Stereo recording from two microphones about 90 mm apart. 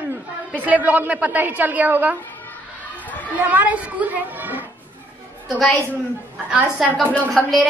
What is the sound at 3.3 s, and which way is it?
A child's voice, 20° right (ahead or behind).